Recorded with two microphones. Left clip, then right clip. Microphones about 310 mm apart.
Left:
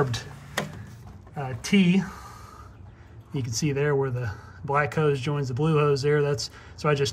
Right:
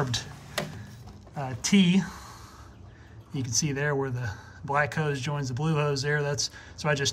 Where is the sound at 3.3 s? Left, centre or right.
Centre.